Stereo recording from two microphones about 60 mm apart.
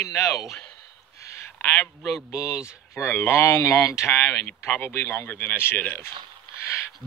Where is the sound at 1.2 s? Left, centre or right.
Left.